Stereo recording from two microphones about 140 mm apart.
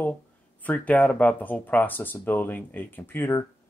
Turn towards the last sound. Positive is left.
turn(degrees=20)  # may be behind; listen again after turning